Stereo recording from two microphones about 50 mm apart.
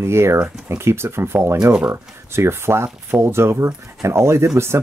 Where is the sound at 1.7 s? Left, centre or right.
Right.